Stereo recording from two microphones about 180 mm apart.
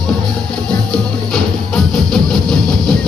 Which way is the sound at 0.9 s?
5° left (ahead or behind).